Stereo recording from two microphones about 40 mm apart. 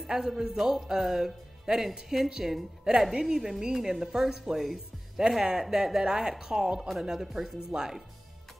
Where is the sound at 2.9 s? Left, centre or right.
Right.